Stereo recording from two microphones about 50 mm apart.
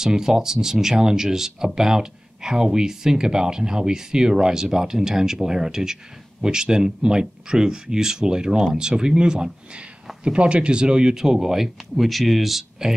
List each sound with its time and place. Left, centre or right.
0.0 s speech: centre